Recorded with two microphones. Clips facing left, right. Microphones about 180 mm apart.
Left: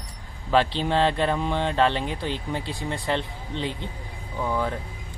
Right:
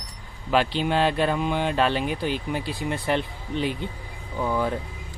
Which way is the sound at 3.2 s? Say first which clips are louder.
Right 3 dB; 20° left (ahead or behind).